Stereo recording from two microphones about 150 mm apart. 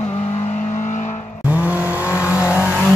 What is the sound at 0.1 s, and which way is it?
Vehicle, 45° left (ahead or behind).